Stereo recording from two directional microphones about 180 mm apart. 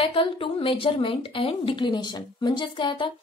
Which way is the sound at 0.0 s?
30° left (ahead or behind).